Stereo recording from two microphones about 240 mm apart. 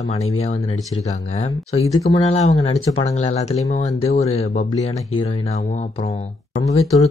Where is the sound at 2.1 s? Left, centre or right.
Left.